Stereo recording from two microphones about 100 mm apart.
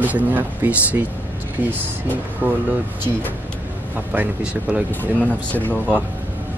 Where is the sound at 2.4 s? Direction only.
20° right (ahead or behind).